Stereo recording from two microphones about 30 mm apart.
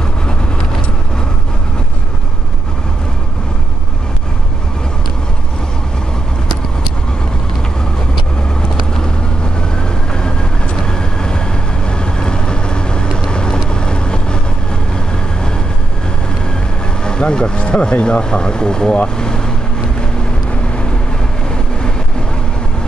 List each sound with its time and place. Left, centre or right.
8.9 s vehicle: left
17.0 s vehicle: left
17.6 s speech: left